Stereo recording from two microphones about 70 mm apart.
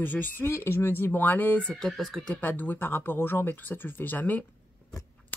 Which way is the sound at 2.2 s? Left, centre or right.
Left.